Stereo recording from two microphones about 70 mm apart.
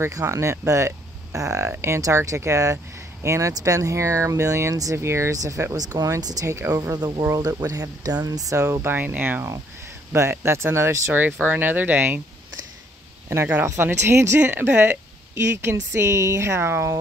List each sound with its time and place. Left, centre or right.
0.0 s speech: right
1.7 s a woman's voice: right
2.0 s a woman's voice: right
5.3 s speech: right
6.4 s speech: right
6.8 s speech: right
7.3 s speech: right
8.8 s speech: right
10.1 s a woman's voice: right
11.1 s speech: right
13.7 s a woman's voice: right
14.4 s a woman's voice: right